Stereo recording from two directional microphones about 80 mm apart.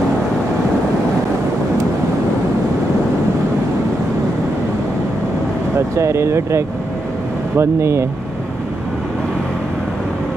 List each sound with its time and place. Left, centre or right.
5.8 s speech: right